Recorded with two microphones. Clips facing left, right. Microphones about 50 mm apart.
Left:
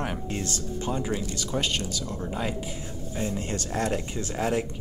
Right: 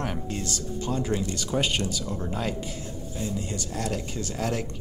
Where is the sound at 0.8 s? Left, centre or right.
Centre.